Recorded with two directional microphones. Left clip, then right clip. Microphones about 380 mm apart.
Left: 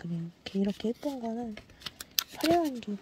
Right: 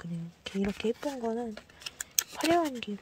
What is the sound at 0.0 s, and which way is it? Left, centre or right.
Speech, centre.